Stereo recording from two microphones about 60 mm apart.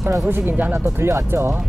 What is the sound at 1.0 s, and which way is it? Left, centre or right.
Speech, right.